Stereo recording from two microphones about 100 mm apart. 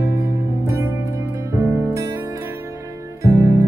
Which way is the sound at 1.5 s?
25° right (ahead or behind).